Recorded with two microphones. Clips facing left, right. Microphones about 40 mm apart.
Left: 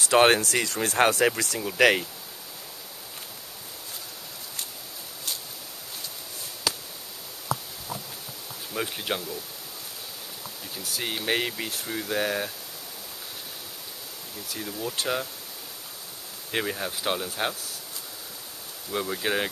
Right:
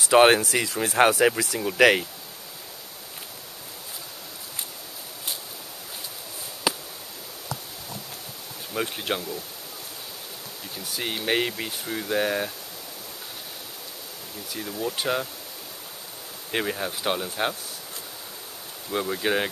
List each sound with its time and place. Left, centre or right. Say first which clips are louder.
0.0 s speech: right 3 dB; centre
6.7 s a sound: right 3 dB; centre
8.7 s speech: right 2 dB; centre
10.8 s speech: right 1 dB; centre
14.5 s speech: right 3 dB; centre
16.5 s speech: right 2 dB; centre
18.9 s speech: right 2 dB; centre